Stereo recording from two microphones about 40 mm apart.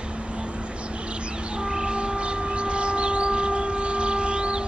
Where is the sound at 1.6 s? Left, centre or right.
Centre.